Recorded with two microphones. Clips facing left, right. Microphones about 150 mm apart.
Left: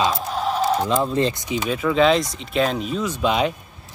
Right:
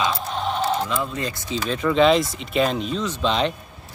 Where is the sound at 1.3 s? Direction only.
15° left (ahead or behind).